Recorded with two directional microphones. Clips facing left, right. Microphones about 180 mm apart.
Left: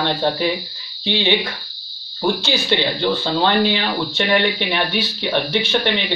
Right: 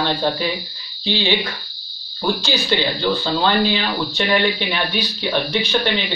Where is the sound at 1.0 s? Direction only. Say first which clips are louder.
Left 1 dB; 20° left (ahead or behind).